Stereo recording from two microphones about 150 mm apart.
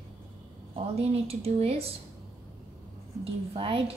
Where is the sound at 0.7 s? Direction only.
40° right (ahead or behind).